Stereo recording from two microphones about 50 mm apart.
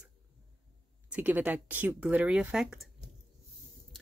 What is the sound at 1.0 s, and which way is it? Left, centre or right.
Speech, right.